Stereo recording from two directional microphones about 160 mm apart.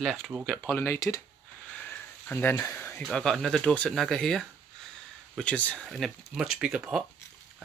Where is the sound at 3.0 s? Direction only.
5° left (ahead or behind).